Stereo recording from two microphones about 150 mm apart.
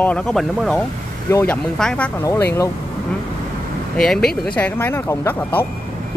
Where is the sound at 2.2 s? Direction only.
20° left (ahead or behind).